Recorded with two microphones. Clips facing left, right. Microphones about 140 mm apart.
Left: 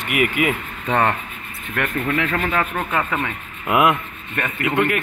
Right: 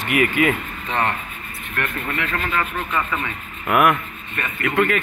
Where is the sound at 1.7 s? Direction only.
80° left.